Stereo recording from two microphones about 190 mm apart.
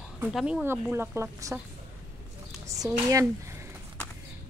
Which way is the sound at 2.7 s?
15° right (ahead or behind).